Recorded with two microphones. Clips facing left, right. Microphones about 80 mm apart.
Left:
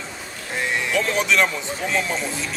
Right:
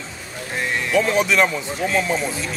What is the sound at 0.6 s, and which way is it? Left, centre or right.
Speech, centre.